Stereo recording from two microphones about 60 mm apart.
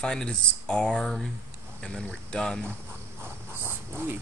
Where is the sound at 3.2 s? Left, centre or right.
Right.